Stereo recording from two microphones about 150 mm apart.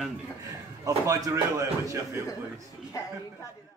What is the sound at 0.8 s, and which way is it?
Speech, 20° right (ahead or behind).